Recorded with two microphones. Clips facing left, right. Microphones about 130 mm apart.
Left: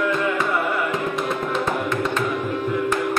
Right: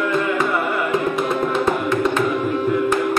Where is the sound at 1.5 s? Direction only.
5° right (ahead or behind).